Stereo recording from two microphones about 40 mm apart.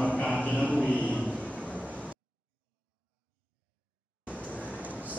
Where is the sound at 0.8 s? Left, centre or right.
Right.